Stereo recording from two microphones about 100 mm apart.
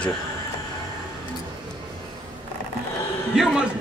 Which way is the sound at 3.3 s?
5° right (ahead or behind).